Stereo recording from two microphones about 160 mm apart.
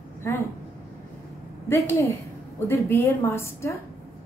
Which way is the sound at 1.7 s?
15° left (ahead or behind).